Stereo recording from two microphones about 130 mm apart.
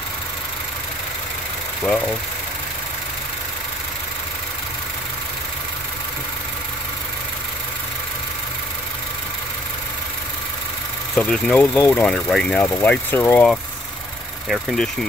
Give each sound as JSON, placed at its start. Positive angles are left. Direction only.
{"t": 11.1, "sound": "speech", "side_deg": 5}
{"t": 12.5, "sound": "speech", "side_deg": 15}
{"t": 14.5, "sound": "speech", "side_deg": 0}